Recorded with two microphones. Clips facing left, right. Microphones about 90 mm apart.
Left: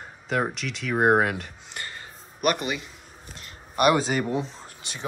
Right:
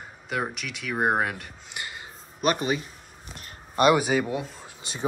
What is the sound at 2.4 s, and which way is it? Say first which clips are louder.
Speech: right 1 dB; 35° right (ahead or behind).